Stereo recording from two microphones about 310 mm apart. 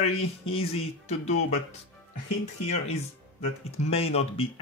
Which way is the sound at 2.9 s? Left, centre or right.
Left.